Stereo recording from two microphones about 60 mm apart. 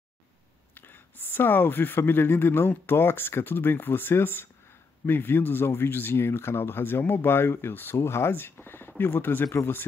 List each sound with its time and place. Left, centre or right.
0.7 s speech: left